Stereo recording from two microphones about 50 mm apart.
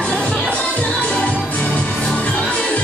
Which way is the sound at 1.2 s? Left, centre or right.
Left.